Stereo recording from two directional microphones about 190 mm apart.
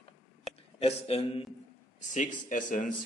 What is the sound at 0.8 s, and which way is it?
A man's voice, 30° left (ahead or behind).